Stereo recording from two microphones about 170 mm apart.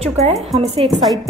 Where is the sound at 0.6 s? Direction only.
35° right (ahead or behind).